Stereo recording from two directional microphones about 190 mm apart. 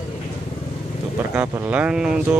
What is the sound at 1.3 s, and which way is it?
Speech, 10° right (ahead or behind).